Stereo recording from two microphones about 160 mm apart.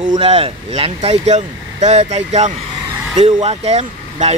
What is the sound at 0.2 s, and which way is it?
Speech, 35° right (ahead or behind).